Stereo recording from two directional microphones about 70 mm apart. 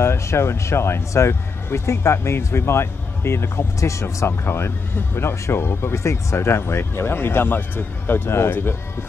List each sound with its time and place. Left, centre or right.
0.0 s speech: left
4.3 s speech: left